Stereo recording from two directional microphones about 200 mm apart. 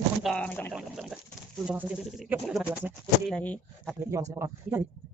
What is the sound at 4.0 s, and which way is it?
Speech, 15° right (ahead or behind).